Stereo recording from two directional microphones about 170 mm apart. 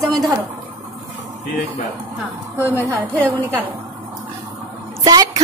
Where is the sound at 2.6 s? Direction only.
15° right (ahead or behind).